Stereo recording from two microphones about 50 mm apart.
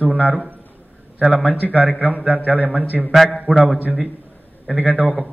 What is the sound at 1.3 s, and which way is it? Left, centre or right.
A man's voice, right.